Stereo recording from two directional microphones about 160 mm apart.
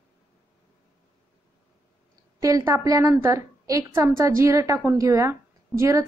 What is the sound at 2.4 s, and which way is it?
A woman's voice, 20° right (ahead or behind).